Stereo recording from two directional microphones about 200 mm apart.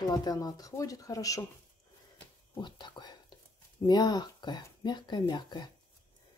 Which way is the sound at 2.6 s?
20° left (ahead or behind).